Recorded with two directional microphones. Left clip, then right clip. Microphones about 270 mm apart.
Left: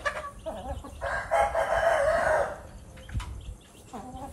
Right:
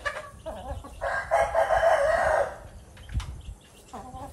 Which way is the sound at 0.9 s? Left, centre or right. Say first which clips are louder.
Right 2 dB; right.